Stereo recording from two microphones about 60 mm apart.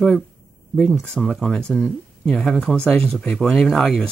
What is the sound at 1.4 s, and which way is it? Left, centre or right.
Speech, centre.